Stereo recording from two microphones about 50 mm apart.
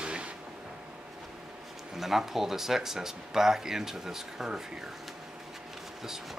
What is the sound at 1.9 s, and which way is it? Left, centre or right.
Speech, centre.